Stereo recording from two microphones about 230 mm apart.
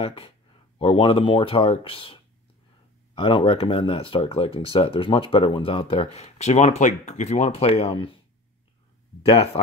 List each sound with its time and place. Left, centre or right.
0.0 s speech: left
9.2 s speech: left